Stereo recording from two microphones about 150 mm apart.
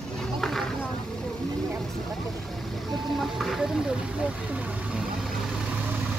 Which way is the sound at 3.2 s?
Centre (ahead or behind).